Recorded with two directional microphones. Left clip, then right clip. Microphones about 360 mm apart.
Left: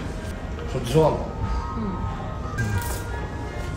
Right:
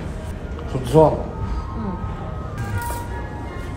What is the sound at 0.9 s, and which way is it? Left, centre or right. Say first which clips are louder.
Speech: right 6 dB; centre.